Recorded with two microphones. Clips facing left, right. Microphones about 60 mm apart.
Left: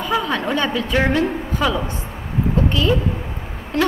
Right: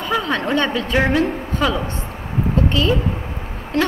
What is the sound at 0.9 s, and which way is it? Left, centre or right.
Speech, centre.